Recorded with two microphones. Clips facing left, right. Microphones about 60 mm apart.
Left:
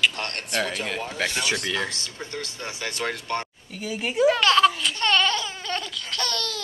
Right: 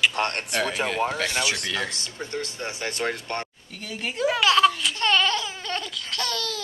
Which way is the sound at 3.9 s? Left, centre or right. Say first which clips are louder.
Left 5 dB; centre.